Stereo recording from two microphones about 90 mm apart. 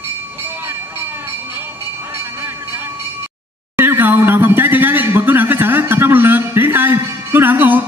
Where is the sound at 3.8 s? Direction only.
20° right (ahead or behind).